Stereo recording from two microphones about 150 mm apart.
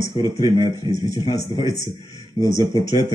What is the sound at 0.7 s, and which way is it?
Speech, 25° left (ahead or behind).